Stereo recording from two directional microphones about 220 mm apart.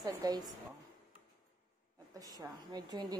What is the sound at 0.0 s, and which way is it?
Speech, 15° right (ahead or behind).